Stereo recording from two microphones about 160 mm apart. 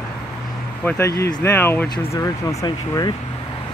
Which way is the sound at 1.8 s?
25° left (ahead or behind).